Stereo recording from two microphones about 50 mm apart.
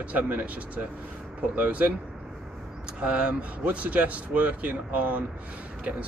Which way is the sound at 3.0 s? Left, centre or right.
Right.